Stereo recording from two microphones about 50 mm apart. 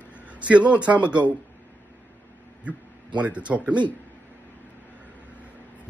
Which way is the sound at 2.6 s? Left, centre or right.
Right.